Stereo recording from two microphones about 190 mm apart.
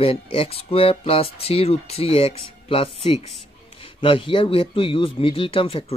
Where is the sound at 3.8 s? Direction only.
25° left (ahead or behind).